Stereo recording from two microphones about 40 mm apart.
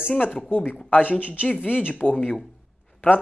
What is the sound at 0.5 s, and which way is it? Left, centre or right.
Speech, left.